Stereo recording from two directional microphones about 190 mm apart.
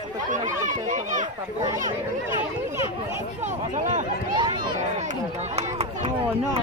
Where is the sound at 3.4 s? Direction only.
40° right (ahead or behind).